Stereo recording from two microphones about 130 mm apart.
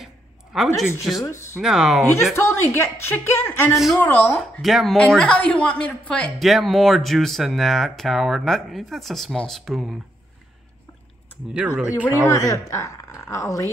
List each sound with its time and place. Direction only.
0.0 s a sound: centre (ahead or behind)
1.1 s a woman's voice: centre (ahead or behind)
2.3 s a woman's voice: 20° left (ahead or behind)
3.7 s a woman's voice: centre (ahead or behind)
4.0 s speech: 15° left (ahead or behind)
4.6 s a woman's voice: centre (ahead or behind)
11.6 s speech: 10° right (ahead or behind)
12.4 s a woman's voice: 20° left (ahead or behind)